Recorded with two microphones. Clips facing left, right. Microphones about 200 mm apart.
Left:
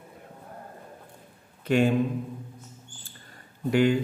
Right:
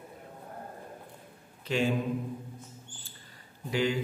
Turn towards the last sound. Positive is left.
turn(degrees=55)  # may be behind; listen again after turning